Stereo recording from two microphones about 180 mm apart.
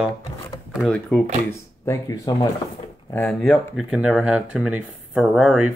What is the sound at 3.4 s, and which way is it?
Speech, centre (ahead or behind).